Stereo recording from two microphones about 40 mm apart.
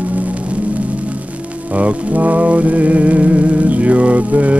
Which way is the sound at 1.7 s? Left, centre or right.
Right.